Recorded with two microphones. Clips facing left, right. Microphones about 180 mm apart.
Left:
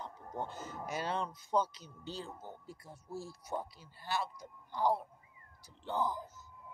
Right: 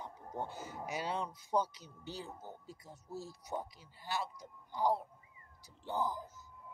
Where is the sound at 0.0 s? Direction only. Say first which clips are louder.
Left 1 dB; 15° right (ahead or behind).